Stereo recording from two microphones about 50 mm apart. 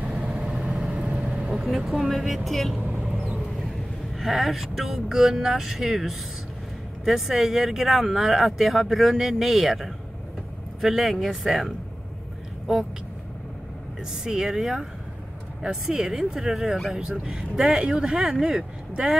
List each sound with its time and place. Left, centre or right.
0.2 s vehicle: right
1.5 s vehicle: centre
1.9 s speech: centre
3.0 s mouse: right
4.2 s speech: centre
14.1 s speech: centre